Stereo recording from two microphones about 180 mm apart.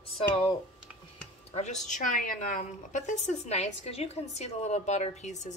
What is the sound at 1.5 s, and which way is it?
A woman's voice, 40° left (ahead or behind).